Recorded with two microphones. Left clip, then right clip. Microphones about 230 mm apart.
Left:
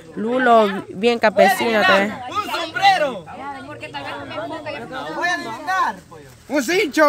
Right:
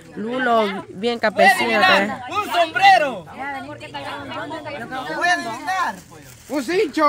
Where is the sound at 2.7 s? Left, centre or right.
Right.